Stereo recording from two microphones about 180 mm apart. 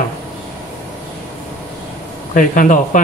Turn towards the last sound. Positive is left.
turn(degrees=45)  # may be behind; listen again after turning